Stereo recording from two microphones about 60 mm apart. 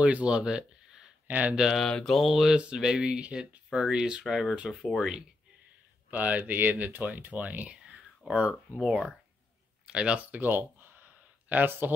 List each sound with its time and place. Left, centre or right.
0.0 s speech: centre
1.2 s a sound: right
1.5 s speech: centre
1.8 s mantra: centre
2.1 s speech: centre
2.5 s speech: centre
6.0 s speech: right; by 9.1 s centre
9.8 s a sound: centre; by 11.9 s right